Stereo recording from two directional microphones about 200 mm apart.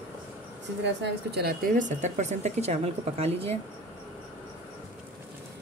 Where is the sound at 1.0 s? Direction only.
55° right (ahead or behind); by 3.6 s 30° right (ahead or behind).